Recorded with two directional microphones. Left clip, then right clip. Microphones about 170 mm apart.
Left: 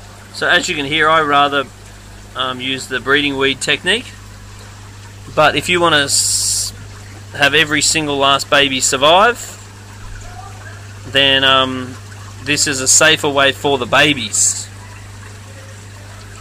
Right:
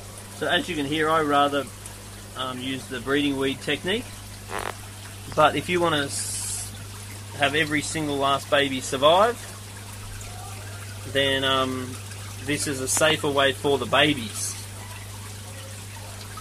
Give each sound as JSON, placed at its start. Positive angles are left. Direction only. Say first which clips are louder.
{"t": 0.4, "sound": "speech", "louder": "left 10 dB", "side_deg": 15}
{"t": 5.3, "sound": "speech", "louder": "left 8 dB", "side_deg": 10}
{"t": 7.3, "sound": "speech", "louder": "left 10 dB", "side_deg": 15}
{"t": 11.1, "sound": "speech", "louder": "left 11 dB", "side_deg": 15}